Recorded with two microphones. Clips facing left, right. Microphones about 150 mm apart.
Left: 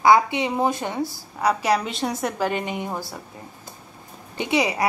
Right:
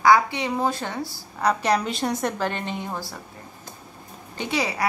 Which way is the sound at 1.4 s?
5° left (ahead or behind).